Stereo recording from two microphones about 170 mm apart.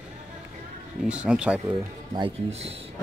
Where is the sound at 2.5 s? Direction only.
35° right (ahead or behind).